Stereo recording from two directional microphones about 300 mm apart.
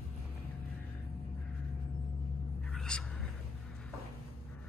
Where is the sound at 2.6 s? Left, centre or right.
Centre.